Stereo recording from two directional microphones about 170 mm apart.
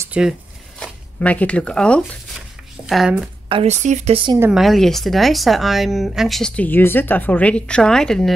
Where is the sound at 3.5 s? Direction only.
40° right (ahead or behind).